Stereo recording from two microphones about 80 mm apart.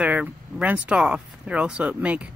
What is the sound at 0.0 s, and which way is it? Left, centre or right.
Speech, centre.